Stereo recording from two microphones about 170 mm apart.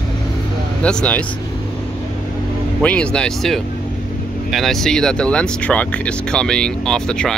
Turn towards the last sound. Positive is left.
turn(degrees=5)  # may be behind; listen again after turning